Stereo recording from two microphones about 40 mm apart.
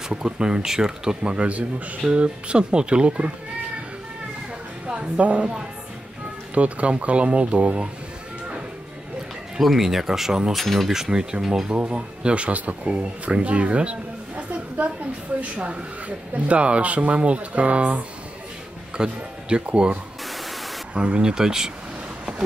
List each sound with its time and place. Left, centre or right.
0.1 s speech: right
4.8 s a woman's voice: right
9.6 s speech: centre
10.5 s speech: centre
10.9 s speech: centre
11.7 s speech: right; by 21.7 s centre